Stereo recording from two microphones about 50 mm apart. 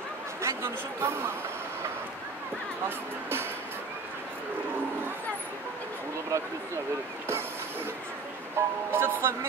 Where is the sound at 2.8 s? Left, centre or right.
Right.